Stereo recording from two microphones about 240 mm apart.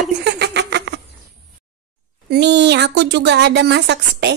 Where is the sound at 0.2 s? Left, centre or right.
Right.